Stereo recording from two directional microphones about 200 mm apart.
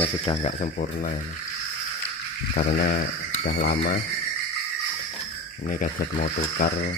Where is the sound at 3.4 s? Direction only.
55° left (ahead or behind).